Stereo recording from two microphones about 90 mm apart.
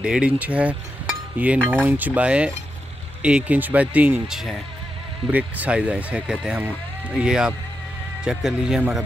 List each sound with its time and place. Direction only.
0.0 s speech: 10° right (ahead or behind)
4.3 s speech: 5° right (ahead or behind)
5.3 s speech: 15° right (ahead or behind)